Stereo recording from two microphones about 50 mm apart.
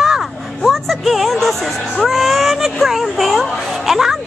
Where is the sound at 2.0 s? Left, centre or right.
Centre.